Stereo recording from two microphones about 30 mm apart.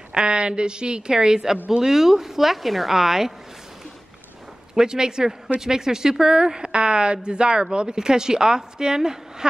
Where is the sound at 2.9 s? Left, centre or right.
Centre.